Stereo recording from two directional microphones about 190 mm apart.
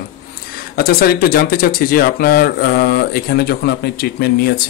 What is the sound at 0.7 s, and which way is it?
Speech, 50° left (ahead or behind).